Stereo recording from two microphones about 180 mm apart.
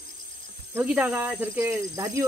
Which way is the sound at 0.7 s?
10° right (ahead or behind).